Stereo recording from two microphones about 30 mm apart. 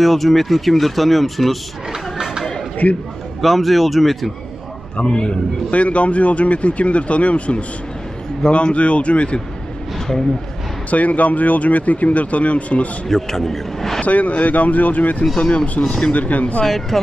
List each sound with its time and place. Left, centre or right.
0.0 s speech: centre
2.8 s speech: left
3.3 s speech: centre
4.9 s a man's voice: left
5.7 s speech: left
9.9 s a sound: centre
10.9 s speech: left
13.1 s speech: centre
14.0 s speech: left
15.3 s speech: left
16.1 s speech: left
16.6 s speech: centre